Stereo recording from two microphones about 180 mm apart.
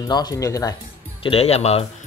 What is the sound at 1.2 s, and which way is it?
Speech, 35° left (ahead or behind).